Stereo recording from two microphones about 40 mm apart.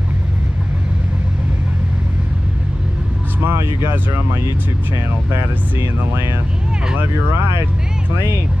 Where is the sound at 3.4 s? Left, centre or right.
Right.